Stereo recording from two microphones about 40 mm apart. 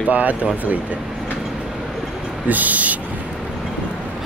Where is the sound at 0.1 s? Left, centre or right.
Right.